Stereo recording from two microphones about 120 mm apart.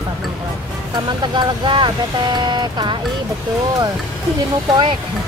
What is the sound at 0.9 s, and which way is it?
Speech, 40° right (ahead or behind).